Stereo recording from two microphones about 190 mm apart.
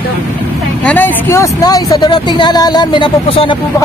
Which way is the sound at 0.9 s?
10° left (ahead or behind).